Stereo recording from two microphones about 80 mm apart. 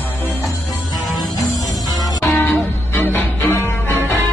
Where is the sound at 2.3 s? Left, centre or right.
Left.